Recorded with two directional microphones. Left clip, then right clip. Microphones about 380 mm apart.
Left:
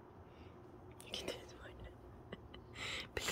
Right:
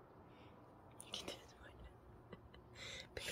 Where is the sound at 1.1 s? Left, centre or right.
Centre.